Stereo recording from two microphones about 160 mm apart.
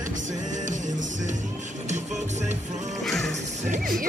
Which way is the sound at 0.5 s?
50° right (ahead or behind).